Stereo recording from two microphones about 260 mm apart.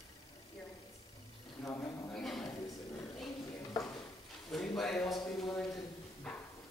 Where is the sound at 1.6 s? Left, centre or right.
Centre.